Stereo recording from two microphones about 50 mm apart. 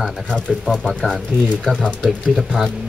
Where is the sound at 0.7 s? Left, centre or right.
Right.